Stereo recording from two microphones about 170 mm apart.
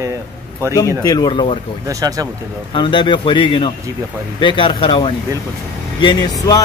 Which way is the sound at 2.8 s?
30° left (ahead or behind).